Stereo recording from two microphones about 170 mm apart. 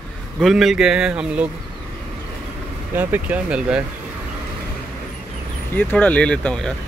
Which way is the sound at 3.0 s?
10° right (ahead or behind).